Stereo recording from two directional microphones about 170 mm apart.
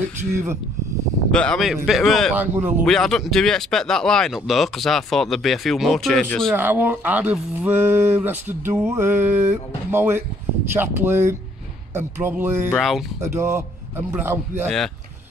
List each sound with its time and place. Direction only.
0.3 s speech: 15° right (ahead or behind)
1.3 s speech: 5° left (ahead or behind)
2.3 s speech: 10° right (ahead or behind)
2.8 s speech: centre (ahead or behind)
6.5 s speech: 10° right (ahead or behind)
12.7 s speech: centre (ahead or behind)
13.2 s speech: 15° right (ahead or behind)